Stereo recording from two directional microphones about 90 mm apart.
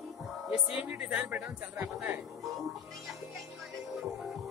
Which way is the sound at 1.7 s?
15° right (ahead or behind).